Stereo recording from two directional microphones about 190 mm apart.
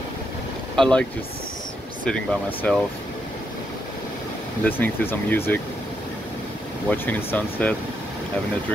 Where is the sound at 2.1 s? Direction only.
5° left (ahead or behind).